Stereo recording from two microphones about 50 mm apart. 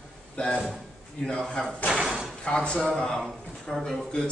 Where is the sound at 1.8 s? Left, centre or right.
Centre.